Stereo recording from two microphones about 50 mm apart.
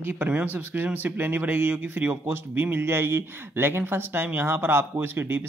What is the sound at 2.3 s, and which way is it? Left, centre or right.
Speech, right.